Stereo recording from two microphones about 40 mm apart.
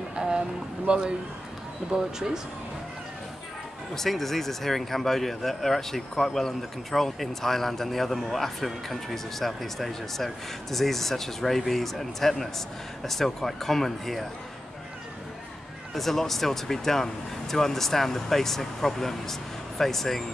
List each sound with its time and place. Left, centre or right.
0.1 s a sound: right
0.8 s a man's voice: right
1.9 s speech: centre
3.9 s speech: centre
15.9 s speech: centre